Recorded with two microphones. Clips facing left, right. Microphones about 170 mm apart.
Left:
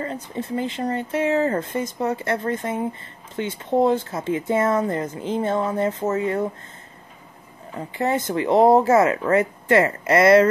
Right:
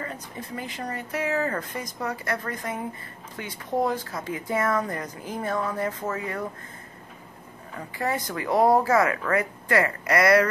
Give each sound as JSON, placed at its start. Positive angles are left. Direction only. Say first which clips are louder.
{"t": 0.0, "sound": "speech", "louder": "left 7 dB", "side_deg": 25}
{"t": 7.7, "sound": "speech", "louder": "left 5 dB", "side_deg": 25}